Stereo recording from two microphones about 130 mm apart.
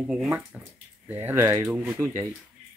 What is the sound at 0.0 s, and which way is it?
Speech, 5° right (ahead or behind).